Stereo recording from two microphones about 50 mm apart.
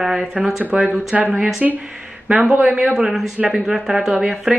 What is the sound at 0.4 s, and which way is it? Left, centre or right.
A man's voice, centre.